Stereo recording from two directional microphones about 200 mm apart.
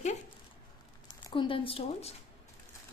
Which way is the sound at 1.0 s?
25° left (ahead or behind).